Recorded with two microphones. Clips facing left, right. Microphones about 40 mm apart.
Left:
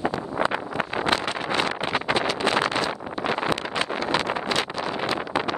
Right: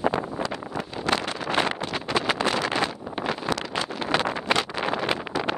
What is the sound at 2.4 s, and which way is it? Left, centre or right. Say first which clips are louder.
Vehicle: left 2 dB; left.